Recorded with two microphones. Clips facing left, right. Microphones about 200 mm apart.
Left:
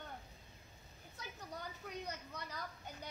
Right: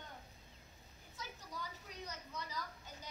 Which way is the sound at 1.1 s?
60° left (ahead or behind).